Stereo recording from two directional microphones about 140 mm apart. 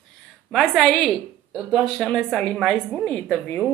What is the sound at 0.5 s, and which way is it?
A woman's voice, 5° left (ahead or behind).